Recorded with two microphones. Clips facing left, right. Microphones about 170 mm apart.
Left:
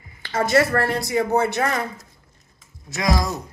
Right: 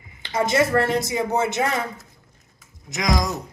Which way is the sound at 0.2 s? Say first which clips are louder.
Left 1 dB; 20° right (ahead or behind).